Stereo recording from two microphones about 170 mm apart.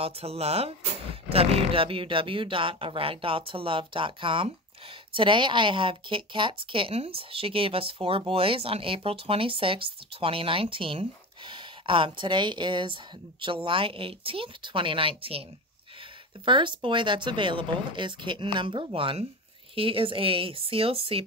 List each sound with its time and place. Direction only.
0.0 s speech: 35° right (ahead or behind)
16.4 s speech: 30° right (ahead or behind)